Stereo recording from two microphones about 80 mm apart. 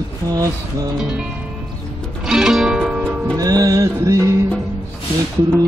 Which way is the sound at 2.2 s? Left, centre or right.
Centre.